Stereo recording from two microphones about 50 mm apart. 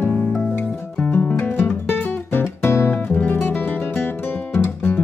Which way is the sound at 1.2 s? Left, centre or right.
Left.